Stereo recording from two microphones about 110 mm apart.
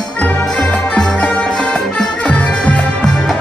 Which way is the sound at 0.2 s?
15° left (ahead or behind).